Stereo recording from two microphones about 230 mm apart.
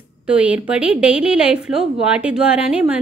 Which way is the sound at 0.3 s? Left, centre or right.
Centre.